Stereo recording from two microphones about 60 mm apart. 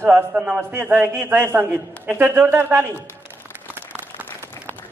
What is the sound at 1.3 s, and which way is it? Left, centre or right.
Speech, right.